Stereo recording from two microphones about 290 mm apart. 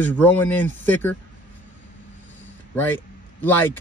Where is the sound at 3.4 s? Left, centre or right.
Centre.